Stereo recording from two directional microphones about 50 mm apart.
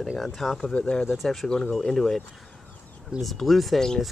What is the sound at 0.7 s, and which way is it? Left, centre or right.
Speech, left.